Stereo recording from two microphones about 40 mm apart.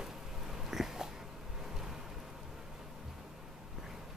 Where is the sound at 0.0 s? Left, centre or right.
Centre.